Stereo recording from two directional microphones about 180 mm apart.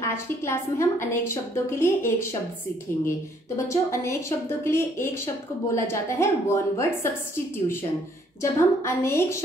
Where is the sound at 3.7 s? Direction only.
15° left (ahead or behind).